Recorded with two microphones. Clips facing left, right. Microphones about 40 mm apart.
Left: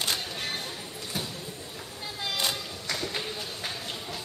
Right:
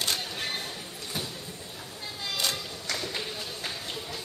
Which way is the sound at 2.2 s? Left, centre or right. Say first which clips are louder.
Left 1 dB; centre.